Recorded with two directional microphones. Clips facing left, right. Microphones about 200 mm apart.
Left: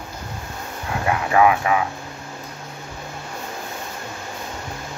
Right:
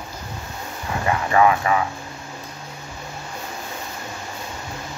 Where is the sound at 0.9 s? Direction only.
5° left (ahead or behind).